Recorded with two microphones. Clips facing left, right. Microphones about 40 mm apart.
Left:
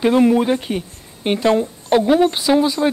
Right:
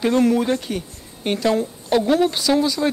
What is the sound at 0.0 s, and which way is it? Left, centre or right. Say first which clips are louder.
Speech: left 3 dB; centre.